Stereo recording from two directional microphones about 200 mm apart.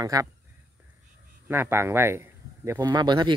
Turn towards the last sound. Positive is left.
turn(degrees=-20)  # may be behind; listen again after turning